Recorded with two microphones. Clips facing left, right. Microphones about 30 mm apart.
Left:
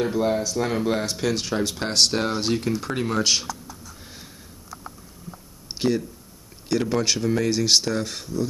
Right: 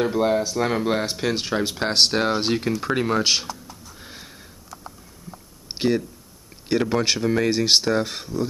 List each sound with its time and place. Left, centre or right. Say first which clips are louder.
0.0 s speech: right 2 dB; centre
4.0 s sniff: right 2 dB; centre
5.3 s a sound: even; right
5.8 s speech: right 1 dB; right